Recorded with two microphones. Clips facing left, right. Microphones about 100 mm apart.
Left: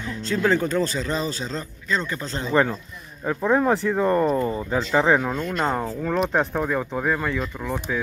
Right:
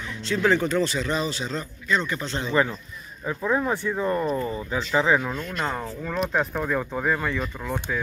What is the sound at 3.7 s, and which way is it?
Speech, 90° left.